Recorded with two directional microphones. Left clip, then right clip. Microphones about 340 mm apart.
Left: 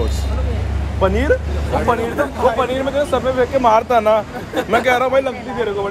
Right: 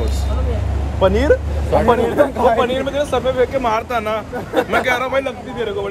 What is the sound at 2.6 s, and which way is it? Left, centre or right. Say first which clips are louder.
Speech: even; centre.